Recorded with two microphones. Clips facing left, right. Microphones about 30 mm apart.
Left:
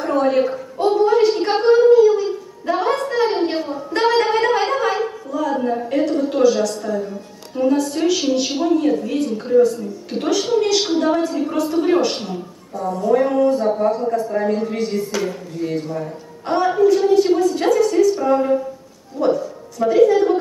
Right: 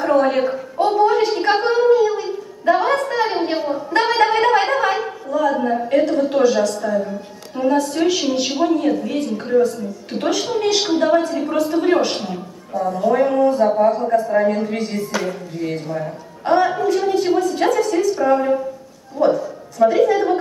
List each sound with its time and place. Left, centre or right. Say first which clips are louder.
0.0 s gargling: right 1 dB; centre
10.2 s a woman's voice: left 1 dB; centre